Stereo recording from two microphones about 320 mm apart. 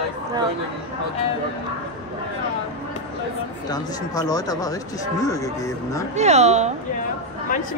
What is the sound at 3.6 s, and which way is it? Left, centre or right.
Speech, centre.